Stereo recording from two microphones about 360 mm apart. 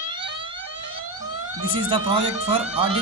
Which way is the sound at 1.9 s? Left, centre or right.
Centre.